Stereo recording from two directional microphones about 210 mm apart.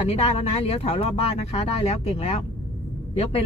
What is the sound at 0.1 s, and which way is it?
Speech, 30° left (ahead or behind).